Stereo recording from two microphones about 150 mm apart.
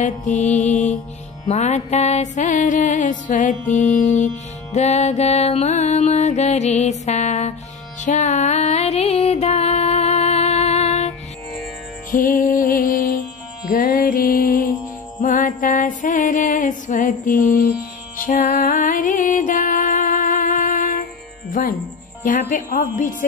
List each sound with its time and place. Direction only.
0.0 s music: 55° left (ahead or behind)
12.1 s music: 65° left (ahead or behind)
21.5 s speech: 65° left (ahead or behind)
22.2 s music: 65° left (ahead or behind)